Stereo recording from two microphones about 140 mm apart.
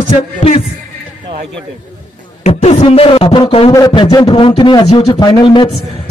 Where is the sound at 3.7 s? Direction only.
25° left (ahead or behind).